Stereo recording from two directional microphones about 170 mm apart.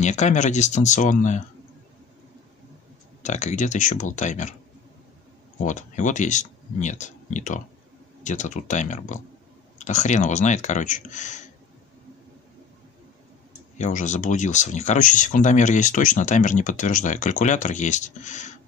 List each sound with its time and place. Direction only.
0.0 s speech: 45° left (ahead or behind)
3.2 s speech: 45° left (ahead or behind)
5.6 s speech: 45° left (ahead or behind)
13.7 s speech: 45° left (ahead or behind)